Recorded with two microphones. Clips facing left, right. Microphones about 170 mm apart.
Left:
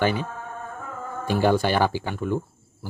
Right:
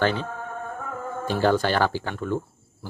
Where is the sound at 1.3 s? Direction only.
10° left (ahead or behind).